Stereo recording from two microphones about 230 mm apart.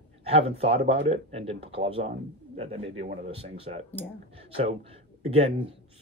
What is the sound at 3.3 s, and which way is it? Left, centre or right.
Speech, right.